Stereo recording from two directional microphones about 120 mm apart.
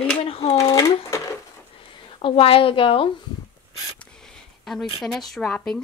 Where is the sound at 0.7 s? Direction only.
25° left (ahead or behind).